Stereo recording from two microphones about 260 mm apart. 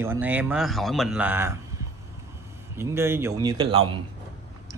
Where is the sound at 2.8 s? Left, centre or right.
Centre.